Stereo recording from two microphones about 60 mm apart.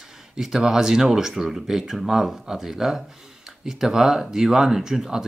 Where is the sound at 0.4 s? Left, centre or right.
Centre.